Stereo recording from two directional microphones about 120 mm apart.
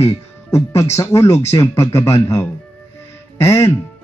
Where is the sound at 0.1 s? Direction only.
25° left (ahead or behind).